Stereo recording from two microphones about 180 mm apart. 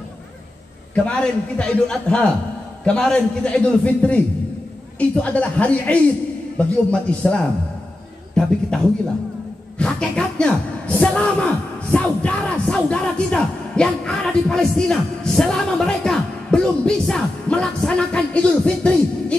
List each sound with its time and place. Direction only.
0.9 s a man's voice: 5° left (ahead or behind)